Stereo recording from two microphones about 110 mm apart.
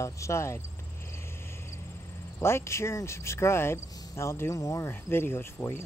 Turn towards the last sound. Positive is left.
turn(degrees=20)  # may be behind; listen again after turning